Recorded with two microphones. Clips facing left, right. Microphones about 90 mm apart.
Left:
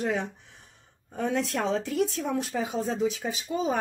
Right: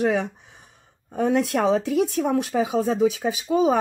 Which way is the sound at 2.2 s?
70° right (ahead or behind).